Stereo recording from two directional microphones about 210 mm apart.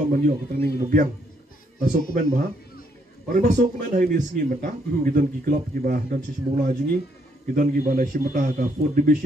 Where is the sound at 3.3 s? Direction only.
40° right (ahead or behind).